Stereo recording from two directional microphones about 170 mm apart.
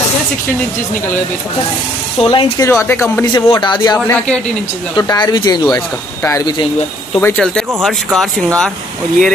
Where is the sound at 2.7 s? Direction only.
10° left (ahead or behind).